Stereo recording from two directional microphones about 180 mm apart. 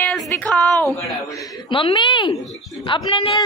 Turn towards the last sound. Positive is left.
turn(degrees=25)  # may be behind; listen again after turning